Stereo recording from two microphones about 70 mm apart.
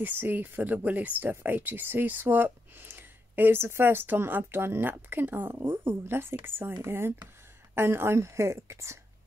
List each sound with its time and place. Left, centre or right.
0.0 s speech: right